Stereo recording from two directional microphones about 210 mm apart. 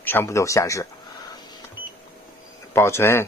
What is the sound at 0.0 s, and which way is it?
Speech, 10° left (ahead or behind).